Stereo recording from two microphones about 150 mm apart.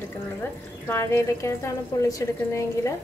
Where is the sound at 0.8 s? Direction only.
15° left (ahead or behind).